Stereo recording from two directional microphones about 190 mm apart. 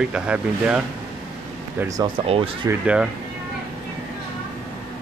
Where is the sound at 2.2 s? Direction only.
30° right (ahead or behind).